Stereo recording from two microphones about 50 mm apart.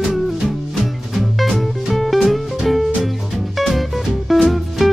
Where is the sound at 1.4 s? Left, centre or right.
Centre.